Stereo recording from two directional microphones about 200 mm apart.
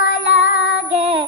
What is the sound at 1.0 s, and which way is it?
Female singing, 30° right (ahead or behind).